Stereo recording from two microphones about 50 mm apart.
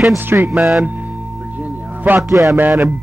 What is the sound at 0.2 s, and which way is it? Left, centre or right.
Speech, right.